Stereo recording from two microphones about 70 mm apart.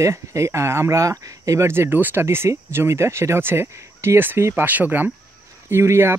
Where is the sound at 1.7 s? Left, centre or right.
Right.